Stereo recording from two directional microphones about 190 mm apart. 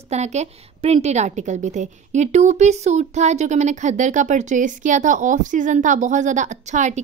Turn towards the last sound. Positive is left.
turn(degrees=-40)  # may be behind; listen again after turning